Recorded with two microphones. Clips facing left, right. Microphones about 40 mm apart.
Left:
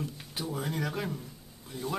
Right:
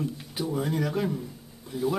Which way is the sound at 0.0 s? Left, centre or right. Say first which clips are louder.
Right 6 dB; centre.